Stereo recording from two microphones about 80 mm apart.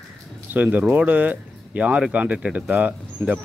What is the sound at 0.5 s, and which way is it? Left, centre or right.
Speech, right.